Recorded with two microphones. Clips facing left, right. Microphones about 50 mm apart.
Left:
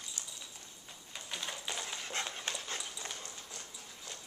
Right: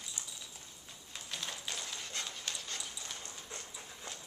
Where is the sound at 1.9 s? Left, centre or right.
Left.